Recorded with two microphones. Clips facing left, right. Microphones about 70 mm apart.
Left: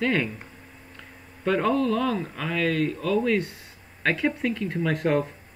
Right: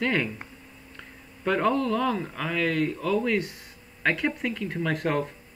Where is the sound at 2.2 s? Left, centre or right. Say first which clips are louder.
Left 1 dB; centre.